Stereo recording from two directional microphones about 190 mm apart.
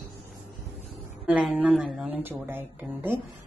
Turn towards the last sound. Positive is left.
turn(degrees=-10)  # may be behind; listen again after turning